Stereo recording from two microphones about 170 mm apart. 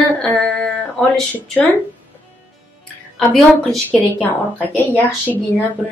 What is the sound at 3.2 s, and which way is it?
A woman's voice, 5° left (ahead or behind).